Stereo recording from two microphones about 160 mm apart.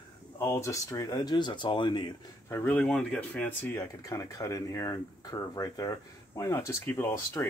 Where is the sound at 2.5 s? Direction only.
10° left (ahead or behind).